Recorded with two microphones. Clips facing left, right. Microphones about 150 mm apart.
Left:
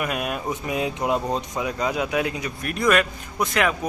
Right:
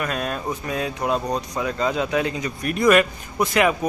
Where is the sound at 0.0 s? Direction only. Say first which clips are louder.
Even; 10° left (ahead or behind).